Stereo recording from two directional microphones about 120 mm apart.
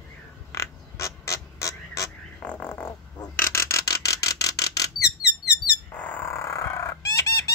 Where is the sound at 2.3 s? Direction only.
10° left (ahead or behind); by 4.8 s 30° left (ahead or behind).